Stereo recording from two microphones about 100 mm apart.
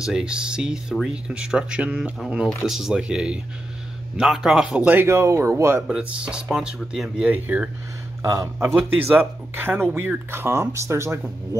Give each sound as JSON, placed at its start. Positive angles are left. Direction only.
{"t": 0.0, "sound": "speech", "side_deg": -10}
{"t": 4.9, "sound": "speech", "side_deg": -30}
{"t": 5.9, "sound": "speech", "side_deg": -10}
{"t": 8.2, "sound": "speech", "side_deg": -30}
{"t": 8.7, "sound": "speech", "side_deg": -15}